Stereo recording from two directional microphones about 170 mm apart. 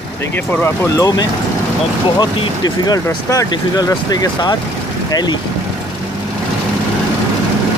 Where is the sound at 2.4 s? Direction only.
25° left (ahead or behind).